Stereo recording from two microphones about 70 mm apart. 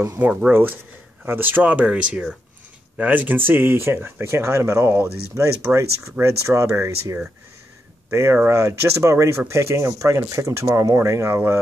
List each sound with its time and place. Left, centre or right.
0.5 s speech: right